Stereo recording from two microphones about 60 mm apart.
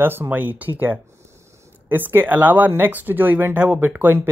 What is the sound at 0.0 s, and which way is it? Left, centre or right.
Speech, right.